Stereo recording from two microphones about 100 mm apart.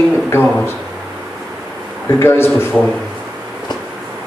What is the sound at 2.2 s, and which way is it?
Speech, 25° left (ahead or behind).